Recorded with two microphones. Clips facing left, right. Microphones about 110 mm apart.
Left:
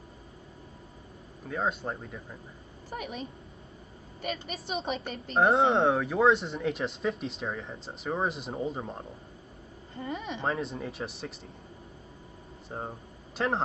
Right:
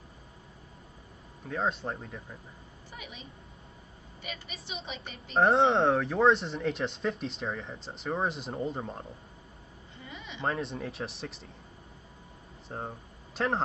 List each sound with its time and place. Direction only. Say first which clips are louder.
1.5 s speech: even; centre (ahead or behind)
2.9 s a woman's voice: left 10 dB; 50° left (ahead or behind)
5.3 s speech: even; centre (ahead or behind)
9.9 s speech: left 10 dB; 45° left (ahead or behind)
10.4 s speech: right 2 dB; centre (ahead or behind)
12.6 s speech: left 1 dB; centre (ahead or behind)